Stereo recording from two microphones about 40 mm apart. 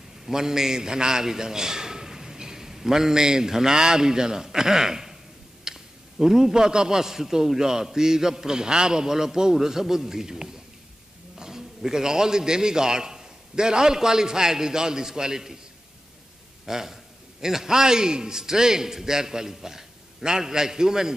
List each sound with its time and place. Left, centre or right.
0.3 s a man's voice: centre
16.6 s a man's voice: centre